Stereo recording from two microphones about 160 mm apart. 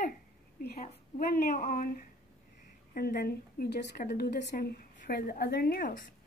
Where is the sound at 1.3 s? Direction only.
70° left (ahead or behind).